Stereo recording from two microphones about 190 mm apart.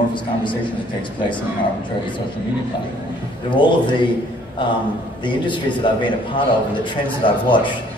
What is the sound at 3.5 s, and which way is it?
Speech, 25° left (ahead or behind).